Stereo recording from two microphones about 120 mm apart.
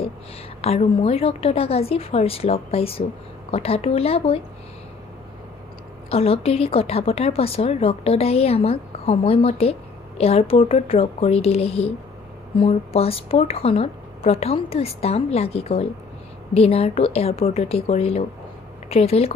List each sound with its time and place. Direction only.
0.6 s a woman's voice: 60° left (ahead or behind)
6.0 s a woman's voice: 55° left (ahead or behind)